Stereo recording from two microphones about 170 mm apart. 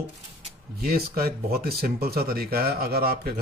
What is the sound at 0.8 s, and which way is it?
Speech, 60° right (ahead or behind).